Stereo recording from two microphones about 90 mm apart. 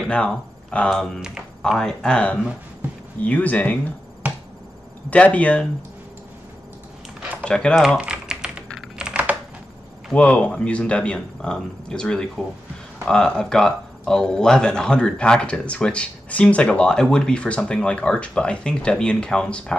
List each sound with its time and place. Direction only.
0.1 s speech: 10° left (ahead or behind)
5.1 s speech: 15° left (ahead or behind)
7.4 s speech: 10° left (ahead or behind)
8.0 s typing: 10° right (ahead or behind)
10.1 s speech: 15° left (ahead or behind)